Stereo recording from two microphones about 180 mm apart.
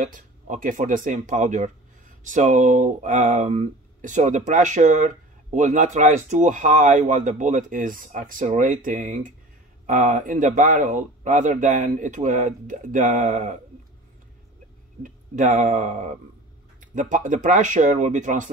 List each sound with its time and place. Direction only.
0.0 s speech: 45° right (ahead or behind)
15.0 s speech: 45° right (ahead or behind)